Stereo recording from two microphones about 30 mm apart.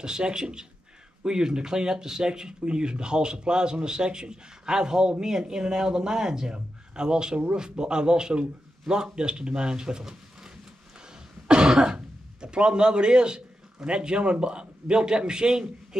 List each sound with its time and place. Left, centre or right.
0.0 s speech: right
11.4 s cough: right
12.4 s a man's voice: right